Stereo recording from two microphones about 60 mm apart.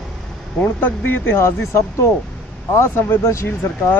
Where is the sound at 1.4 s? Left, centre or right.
Left.